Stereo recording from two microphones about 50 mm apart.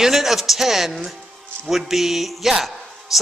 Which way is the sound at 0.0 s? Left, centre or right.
Centre.